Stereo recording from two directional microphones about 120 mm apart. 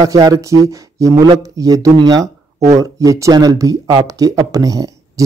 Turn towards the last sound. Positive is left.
turn(degrees=-30)  # may be behind; listen again after turning